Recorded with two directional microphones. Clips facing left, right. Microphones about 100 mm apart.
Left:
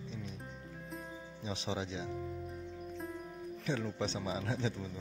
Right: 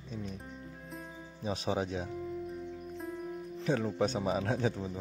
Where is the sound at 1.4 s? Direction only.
45° right (ahead or behind).